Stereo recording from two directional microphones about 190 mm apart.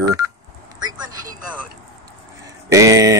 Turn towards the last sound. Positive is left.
turn(degrees=-15)  # may be behind; listen again after turning